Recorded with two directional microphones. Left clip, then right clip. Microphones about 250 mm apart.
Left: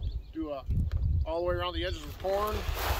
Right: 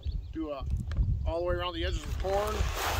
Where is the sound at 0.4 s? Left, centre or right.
Centre.